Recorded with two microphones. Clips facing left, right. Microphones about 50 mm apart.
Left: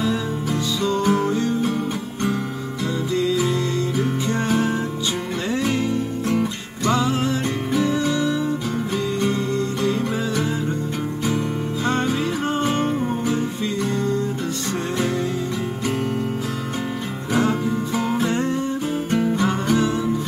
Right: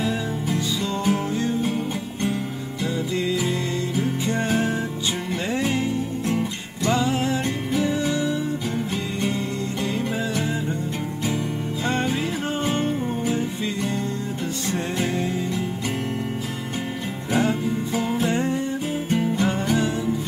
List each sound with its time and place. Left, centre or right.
1.0 s music: left
3.2 s music: right
6.2 s music: left
6.9 s music: centre
17.3 s music: left